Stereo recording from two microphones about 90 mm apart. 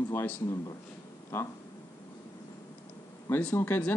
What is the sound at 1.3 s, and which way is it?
Speech, 30° left (ahead or behind).